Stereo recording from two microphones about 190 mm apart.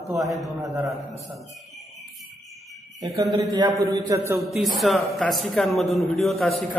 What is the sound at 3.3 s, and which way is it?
Speech, 20° right (ahead or behind).